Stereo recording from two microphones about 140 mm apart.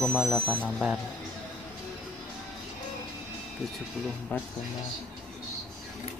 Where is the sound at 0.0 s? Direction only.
5° left (ahead or behind).